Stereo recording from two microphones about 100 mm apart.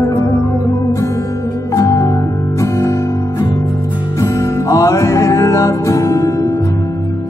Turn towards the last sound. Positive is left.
turn(degrees=35)  # may be behind; listen again after turning